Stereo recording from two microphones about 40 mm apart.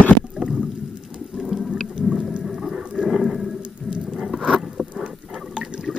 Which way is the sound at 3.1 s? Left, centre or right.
Centre.